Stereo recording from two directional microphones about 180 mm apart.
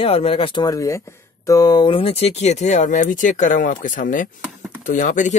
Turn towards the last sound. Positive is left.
turn(degrees=45)  # may be behind; listen again after turning